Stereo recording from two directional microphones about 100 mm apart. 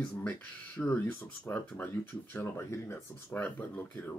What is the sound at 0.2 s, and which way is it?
Speech, 20° left (ahead or behind).